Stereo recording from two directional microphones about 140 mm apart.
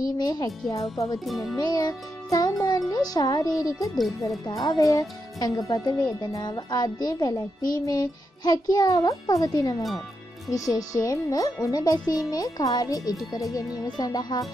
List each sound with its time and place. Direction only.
0.0 s speech: 25° left (ahead or behind)
1.2 s speech: centre (ahead or behind)
1.6 s speech: 25° left (ahead or behind)